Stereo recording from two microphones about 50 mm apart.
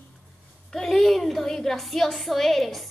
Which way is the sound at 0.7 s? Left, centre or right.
Centre.